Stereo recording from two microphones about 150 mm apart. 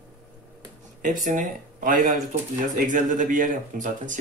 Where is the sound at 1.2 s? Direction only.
55° right (ahead or behind).